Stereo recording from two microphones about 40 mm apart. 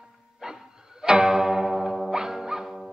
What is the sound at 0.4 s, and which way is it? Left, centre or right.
Music, centre.